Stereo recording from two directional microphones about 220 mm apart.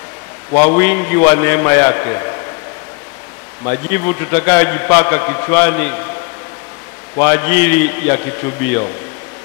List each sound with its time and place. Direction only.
0.6 s a man's voice: 10° left (ahead or behind)
3.6 s a man's voice: 10° left (ahead or behind)
7.2 s a man's voice: 10° left (ahead or behind)